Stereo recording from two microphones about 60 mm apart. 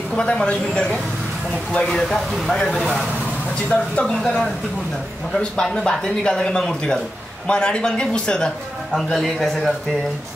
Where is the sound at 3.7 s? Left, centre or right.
Left.